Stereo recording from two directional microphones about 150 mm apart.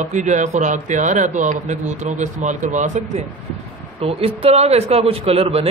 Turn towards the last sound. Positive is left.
turn(degrees=-40)  # may be behind; listen again after turning